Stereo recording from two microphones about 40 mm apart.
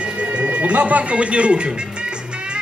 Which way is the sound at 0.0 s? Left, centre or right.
Right.